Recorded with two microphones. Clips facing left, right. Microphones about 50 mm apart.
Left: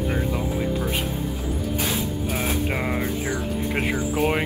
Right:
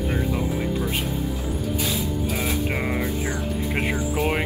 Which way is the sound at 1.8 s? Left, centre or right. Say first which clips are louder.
Even; left.